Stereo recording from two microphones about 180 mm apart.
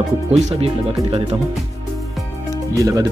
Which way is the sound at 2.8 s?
20° right (ahead or behind).